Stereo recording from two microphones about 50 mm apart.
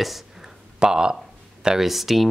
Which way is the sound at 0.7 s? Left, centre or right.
Centre.